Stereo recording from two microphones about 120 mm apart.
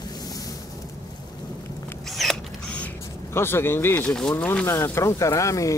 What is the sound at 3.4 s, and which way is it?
Speech, 20° left (ahead or behind).